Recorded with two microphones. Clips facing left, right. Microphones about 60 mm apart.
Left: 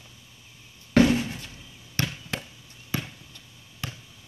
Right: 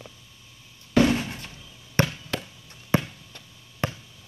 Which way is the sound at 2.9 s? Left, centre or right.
Right.